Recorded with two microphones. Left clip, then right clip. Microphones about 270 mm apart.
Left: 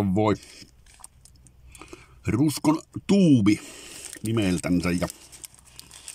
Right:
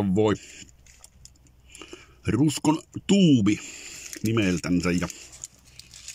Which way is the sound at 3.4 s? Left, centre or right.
Left.